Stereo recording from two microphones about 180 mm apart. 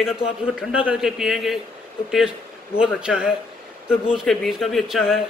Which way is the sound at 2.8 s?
5° right (ahead or behind).